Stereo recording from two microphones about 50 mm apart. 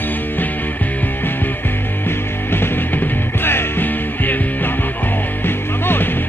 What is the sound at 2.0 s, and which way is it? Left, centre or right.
Music, left.